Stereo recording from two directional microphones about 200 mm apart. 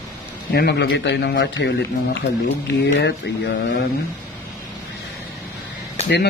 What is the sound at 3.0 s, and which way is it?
Speech, 60° left (ahead or behind).